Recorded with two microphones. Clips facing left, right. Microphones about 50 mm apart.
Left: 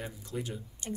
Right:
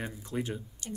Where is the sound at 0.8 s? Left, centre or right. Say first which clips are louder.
Left 4 dB; left.